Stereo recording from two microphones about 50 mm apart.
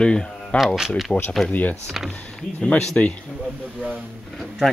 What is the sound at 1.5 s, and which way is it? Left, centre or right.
Speech, left.